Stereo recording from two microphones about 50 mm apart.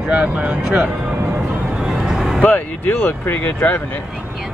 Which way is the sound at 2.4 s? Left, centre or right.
Left.